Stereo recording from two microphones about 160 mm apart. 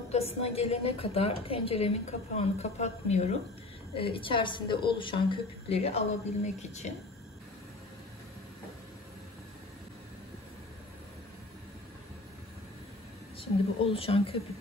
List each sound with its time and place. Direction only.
0.1 s a woman's voice: 40° left (ahead or behind)
3.9 s a woman's voice: 35° left (ahead or behind)
13.4 s a woman's voice: 35° left (ahead or behind)